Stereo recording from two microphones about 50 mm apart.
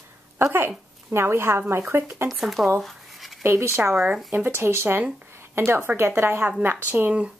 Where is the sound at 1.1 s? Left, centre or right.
Right.